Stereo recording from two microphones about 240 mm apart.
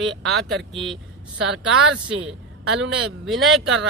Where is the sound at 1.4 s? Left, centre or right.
Right.